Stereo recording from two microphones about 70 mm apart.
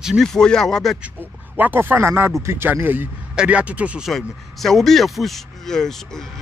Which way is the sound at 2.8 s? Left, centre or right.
Right.